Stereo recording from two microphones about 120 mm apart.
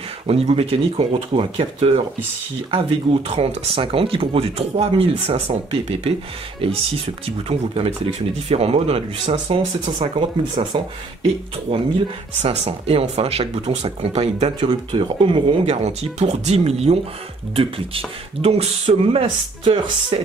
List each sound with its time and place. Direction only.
0.3 s speech: 55° right (ahead or behind)
9.6 s speech: 40° right (ahead or behind)
12.4 s speech: 60° right (ahead or behind)
14.6 s speech: 45° right (ahead or behind); by 18.7 s 60° right (ahead or behind)
18.9 s speech: 40° right (ahead or behind)